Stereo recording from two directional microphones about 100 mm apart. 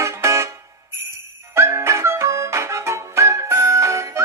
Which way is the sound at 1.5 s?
25° right (ahead or behind).